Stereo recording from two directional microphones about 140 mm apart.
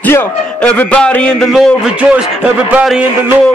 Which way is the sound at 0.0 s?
10° left (ahead or behind).